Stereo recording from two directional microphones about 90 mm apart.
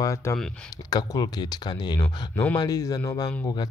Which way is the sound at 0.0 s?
35° left (ahead or behind).